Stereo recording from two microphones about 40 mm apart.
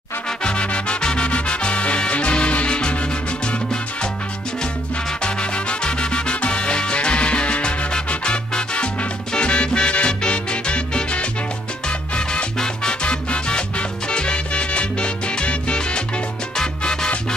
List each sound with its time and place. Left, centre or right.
0.4 s music: left
5.2 s salsa music: left
12.2 s music: left
13.0 s salsa music: left